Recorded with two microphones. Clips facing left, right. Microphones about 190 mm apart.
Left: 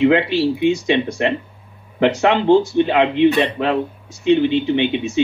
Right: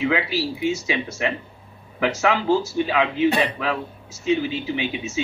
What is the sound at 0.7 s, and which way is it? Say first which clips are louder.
Speech: left 8 dB; 35° left (ahead or behind).